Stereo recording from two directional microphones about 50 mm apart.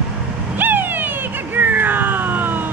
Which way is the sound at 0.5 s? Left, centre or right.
Right.